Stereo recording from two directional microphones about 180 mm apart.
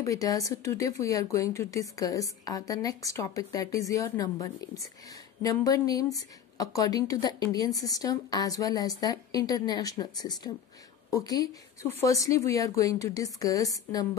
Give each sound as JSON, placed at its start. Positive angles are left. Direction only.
{"t": 0.0, "sound": "a woman's voice", "side_deg": 20}